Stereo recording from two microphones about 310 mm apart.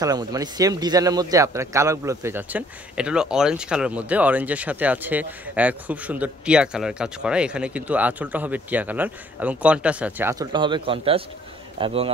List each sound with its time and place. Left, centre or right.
0.0 s a man's voice: centre